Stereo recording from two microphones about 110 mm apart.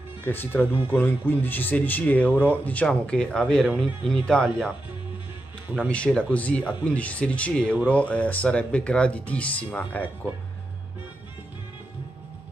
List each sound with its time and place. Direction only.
0.2 s speech: 20° left (ahead or behind)
5.8 s speech: 10° left (ahead or behind)